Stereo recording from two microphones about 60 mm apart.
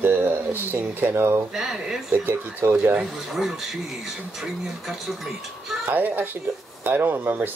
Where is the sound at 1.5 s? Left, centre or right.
Centre.